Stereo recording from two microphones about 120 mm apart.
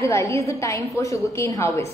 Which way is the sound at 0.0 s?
25° left (ahead or behind).